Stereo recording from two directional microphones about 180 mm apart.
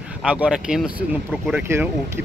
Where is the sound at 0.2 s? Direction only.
5° right (ahead or behind).